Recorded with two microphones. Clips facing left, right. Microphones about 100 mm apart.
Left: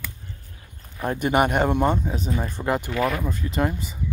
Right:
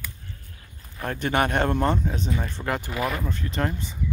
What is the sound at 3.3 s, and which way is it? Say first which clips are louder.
Speech: left 3 dB; 10° left (ahead or behind).